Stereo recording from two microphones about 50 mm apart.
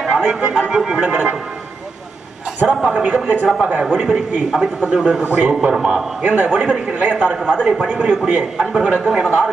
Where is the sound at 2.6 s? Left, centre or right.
Centre.